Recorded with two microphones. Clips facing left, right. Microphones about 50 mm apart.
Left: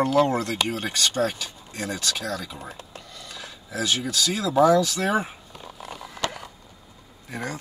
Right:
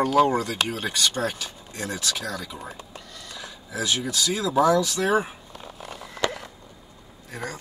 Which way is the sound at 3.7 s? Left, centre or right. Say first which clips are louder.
Left 1 dB; centre.